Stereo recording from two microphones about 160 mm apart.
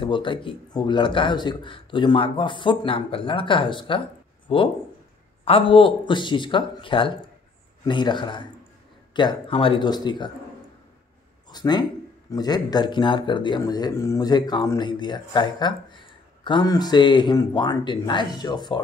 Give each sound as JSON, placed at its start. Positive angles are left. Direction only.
{"t": 0.0, "sound": "speech", "side_deg": 30}
{"t": 11.5, "sound": "speech", "side_deg": 25}